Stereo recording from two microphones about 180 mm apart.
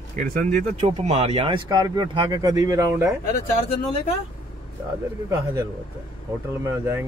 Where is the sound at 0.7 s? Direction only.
35° right (ahead or behind); by 3.2 s 15° right (ahead or behind).